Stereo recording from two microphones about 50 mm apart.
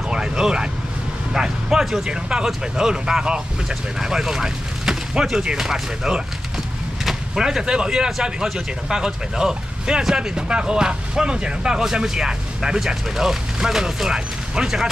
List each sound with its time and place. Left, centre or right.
0.1 s vehicle: centre
1.3 s speech: centre